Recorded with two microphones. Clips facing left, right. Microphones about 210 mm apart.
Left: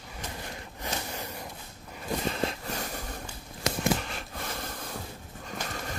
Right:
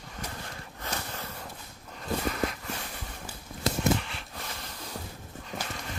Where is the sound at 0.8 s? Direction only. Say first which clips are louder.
Left 2 dB; 15° left (ahead or behind).